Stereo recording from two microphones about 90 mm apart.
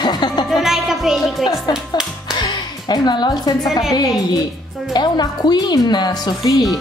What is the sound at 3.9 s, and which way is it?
A woman's voice, 45° left (ahead or behind).